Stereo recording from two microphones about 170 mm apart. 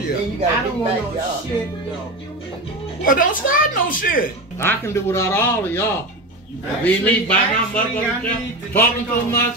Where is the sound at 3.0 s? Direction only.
55° left (ahead or behind).